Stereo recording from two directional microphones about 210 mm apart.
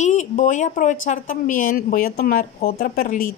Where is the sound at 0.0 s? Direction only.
35° left (ahead or behind).